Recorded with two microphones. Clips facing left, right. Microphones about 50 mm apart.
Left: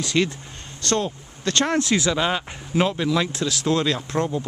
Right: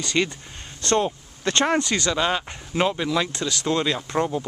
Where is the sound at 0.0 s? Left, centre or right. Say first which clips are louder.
Left 2 dB; centre.